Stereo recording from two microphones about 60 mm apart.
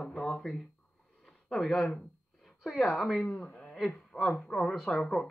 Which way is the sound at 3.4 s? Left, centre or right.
Left.